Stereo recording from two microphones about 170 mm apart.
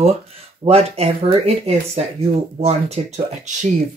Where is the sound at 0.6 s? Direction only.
35° right (ahead or behind).